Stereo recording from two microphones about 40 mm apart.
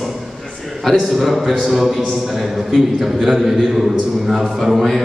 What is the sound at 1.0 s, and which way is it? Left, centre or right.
A man's voice, centre.